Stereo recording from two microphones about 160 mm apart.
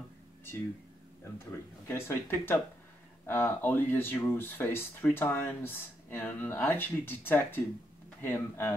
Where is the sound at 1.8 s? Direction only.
15° left (ahead or behind).